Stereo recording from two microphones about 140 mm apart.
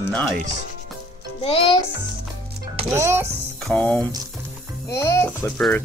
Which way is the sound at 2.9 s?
20° right (ahead or behind).